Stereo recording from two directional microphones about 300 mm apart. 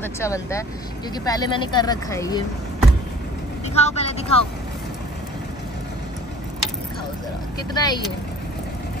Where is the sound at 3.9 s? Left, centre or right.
Left.